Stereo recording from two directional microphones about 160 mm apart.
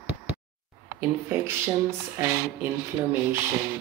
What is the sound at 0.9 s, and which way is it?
Speech, 15° right (ahead or behind).